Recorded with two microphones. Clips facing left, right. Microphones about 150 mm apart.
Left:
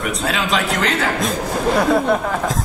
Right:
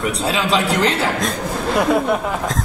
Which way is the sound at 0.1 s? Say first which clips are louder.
Right 2 dB; 30° right (ahead or behind).